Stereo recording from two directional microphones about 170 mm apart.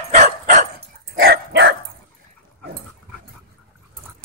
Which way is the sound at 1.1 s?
65° right (ahead or behind).